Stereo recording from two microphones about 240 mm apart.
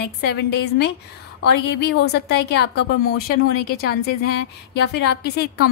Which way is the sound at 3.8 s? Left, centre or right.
Left.